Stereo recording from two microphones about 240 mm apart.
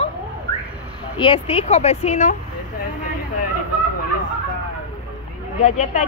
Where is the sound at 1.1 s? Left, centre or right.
Left.